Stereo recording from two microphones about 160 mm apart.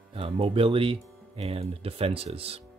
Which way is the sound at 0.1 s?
35° right (ahead or behind).